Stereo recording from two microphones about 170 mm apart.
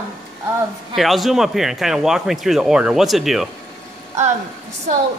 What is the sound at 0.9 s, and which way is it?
Speech, centre (ahead or behind).